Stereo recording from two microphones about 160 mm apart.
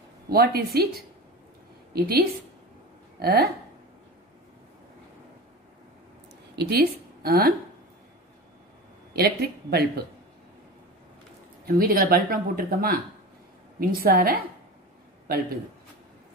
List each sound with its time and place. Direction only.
0.3 s speech: 75° right (ahead or behind)
2.0 s speech: 75° right (ahead or behind)
6.5 s speech: 90° right; by 7.5 s 70° right (ahead or behind)
9.1 s a man's voice: 80° right
11.6 s speech: 70° right (ahead or behind)